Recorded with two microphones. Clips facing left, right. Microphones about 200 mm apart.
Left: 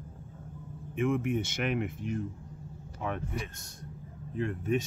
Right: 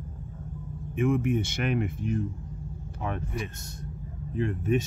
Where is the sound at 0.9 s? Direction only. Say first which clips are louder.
Right 3 dB; 5° right (ahead or behind).